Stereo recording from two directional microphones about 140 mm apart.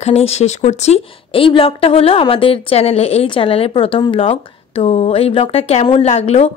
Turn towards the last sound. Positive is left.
turn(degrees=50)  # may be behind; listen again after turning